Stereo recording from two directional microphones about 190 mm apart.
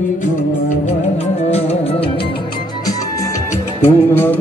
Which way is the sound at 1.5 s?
30° left (ahead or behind).